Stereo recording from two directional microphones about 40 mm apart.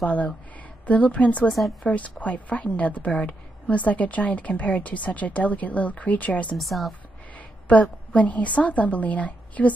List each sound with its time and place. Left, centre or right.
0.0 s a woman's voice: left
6.5 s a woman's voice: centre
7.6 s a woman's voice: left